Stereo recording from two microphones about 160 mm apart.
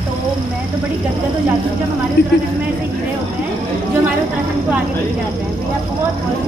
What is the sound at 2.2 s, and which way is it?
Speech, 90° left.